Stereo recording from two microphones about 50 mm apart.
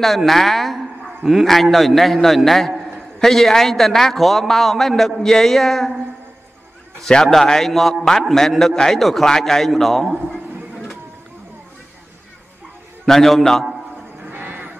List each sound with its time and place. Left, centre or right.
0.0 s a man's voice: centre
7.1 s a man's voice: centre
13.0 s a man's voice: centre
14.3 s neigh: right